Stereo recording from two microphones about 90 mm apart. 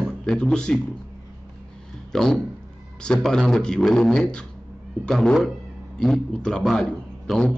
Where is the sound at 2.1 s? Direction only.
5° left (ahead or behind).